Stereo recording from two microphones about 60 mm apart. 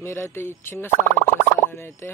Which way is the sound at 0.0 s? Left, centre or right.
Left.